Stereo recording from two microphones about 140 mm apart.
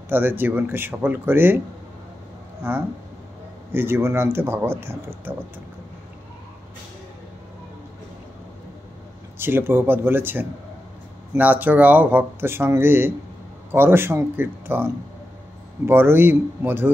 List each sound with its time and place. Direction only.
0.1 s speech: 15° right (ahead or behind)
2.6 s speech: 15° right (ahead or behind)
9.4 s speech: 15° right (ahead or behind)